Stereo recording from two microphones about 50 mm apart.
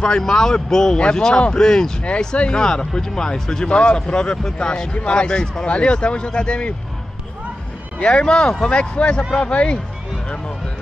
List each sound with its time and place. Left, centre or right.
0.2 s speech: centre
8.0 s speech: centre